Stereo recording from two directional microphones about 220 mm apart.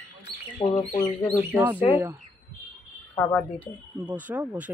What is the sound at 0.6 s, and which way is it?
Speech, 30° left (ahead or behind).